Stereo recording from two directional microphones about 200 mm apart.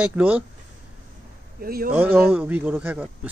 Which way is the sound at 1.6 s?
45° right (ahead or behind).